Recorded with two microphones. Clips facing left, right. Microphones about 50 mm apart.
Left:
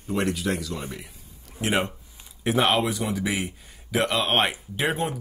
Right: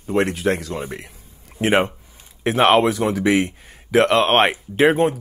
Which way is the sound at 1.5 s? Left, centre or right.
Right.